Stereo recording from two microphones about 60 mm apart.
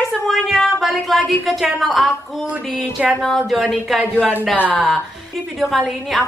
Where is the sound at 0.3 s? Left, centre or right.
Centre.